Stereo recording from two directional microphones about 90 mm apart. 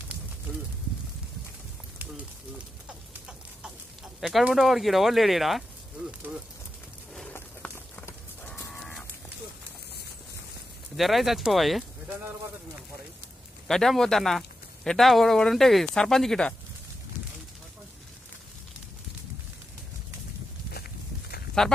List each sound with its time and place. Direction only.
2.9 s a sound: 10° right (ahead or behind)
4.2 s speech: centre (ahead or behind)
7.3 s a sound: 25° left (ahead or behind)
8.7 s fowl: 5° left (ahead or behind)
11.0 s speech: centre (ahead or behind)
13.7 s speech: 5° left (ahead or behind)
21.6 s speech: 5° left (ahead or behind)